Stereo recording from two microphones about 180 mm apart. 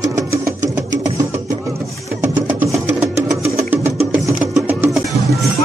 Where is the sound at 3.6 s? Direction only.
10° right (ahead or behind).